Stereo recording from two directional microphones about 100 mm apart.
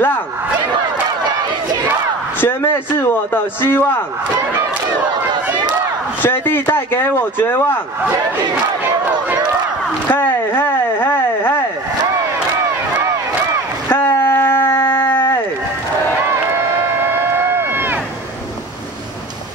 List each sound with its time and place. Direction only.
2.4 s speech: 20° left (ahead or behind)
6.2 s speech: 20° left (ahead or behind)
10.0 s speech: 20° left (ahead or behind)
13.8 s a sound: 20° left (ahead or behind)
16.3 s a sound: 20° right (ahead or behind)
17.6 s run: 20° right (ahead or behind)